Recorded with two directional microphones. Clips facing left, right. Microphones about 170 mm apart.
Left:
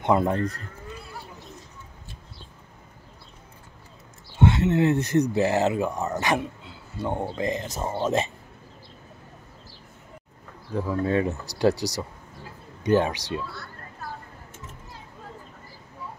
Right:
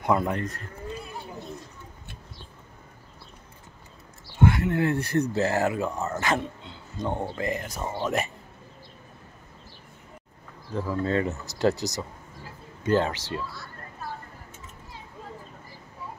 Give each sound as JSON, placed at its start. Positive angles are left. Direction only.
{"t": 0.0, "sound": "speech", "side_deg": 25}
{"t": 4.4, "sound": "speech", "side_deg": 25}
{"t": 6.6, "sound": "a sound", "side_deg": 5}
{"t": 7.3, "sound": "speech", "side_deg": 20}
{"t": 10.7, "sound": "speech", "side_deg": 15}